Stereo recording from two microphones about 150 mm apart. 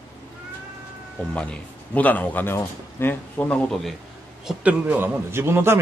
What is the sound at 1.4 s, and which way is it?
Speech, 10° left (ahead or behind).